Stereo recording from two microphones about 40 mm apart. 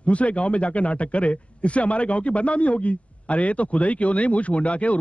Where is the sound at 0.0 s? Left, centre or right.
Left.